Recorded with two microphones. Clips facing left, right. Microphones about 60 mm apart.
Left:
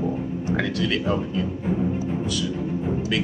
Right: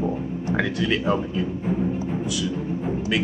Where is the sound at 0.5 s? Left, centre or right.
Centre.